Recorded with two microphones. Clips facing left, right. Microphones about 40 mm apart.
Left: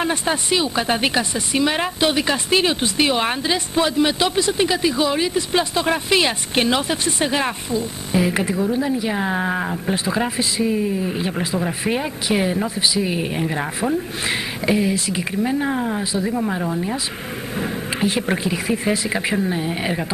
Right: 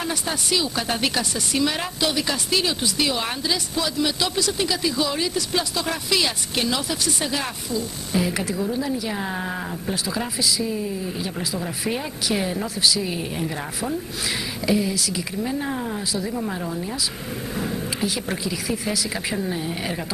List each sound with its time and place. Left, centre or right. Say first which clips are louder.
0.0 s speech: left 6 dB; left
15.6 s speech: left 5 dB; left
17.6 s speech: left 4 dB; left